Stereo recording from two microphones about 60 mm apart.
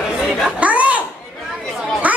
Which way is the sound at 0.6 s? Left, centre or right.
Right.